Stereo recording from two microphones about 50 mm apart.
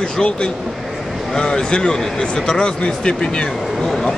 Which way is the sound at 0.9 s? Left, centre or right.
Centre.